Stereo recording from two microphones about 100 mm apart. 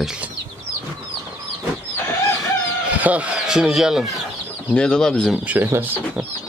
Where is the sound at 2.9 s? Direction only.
15° right (ahead or behind).